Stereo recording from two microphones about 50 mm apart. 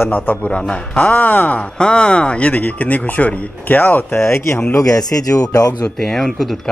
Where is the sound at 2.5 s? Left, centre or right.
Left.